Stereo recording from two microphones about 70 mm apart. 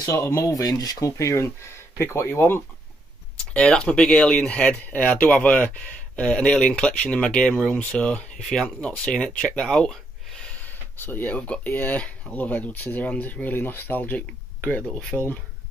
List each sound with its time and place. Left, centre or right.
0.0 s speech: left
0.4 s speech: left
3.3 s speech: centre
10.7 s speech: left
15.1 s speech: centre